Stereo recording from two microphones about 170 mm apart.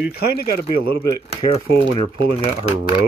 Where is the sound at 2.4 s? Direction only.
35° left (ahead or behind).